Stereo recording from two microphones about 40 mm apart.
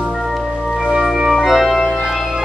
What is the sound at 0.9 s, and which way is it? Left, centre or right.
Organ, centre.